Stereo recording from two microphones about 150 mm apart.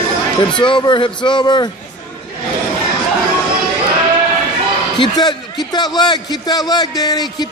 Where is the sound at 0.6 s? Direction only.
30° left (ahead or behind).